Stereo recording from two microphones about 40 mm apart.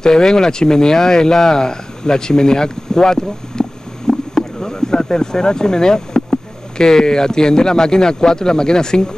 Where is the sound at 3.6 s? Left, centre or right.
Centre.